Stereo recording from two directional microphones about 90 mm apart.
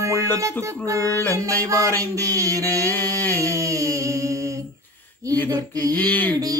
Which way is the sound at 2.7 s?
20° left (ahead or behind).